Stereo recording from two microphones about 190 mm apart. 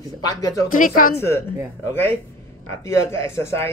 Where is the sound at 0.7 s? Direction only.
45° left (ahead or behind).